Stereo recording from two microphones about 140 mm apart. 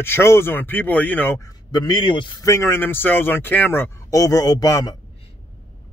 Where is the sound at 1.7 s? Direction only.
30° left (ahead or behind).